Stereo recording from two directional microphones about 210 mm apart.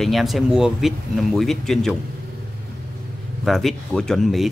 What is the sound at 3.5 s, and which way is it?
Speech, centre (ahead or behind).